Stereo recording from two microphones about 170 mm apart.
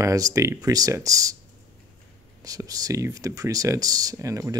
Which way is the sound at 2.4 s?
20° right (ahead or behind).